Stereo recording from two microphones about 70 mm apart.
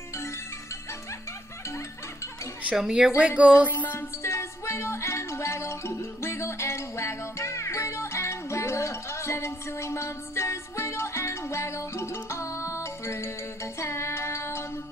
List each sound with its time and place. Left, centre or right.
2.7 s a woman's voice: centre
3.2 s a sound: centre
3.6 s music: left
4.2 s music: left